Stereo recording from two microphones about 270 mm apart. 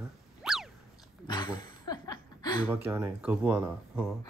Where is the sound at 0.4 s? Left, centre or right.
Centre.